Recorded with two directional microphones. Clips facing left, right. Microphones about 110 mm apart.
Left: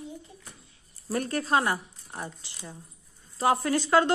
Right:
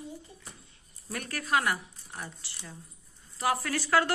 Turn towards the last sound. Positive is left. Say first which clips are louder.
# left 4 dB
turn(degrees=25)  # may be behind; listen again after turning